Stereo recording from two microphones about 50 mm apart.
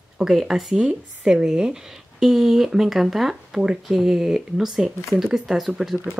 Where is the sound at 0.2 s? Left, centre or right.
Centre.